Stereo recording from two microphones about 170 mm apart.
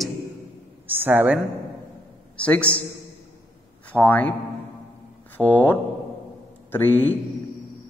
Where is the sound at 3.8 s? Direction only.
10° left (ahead or behind).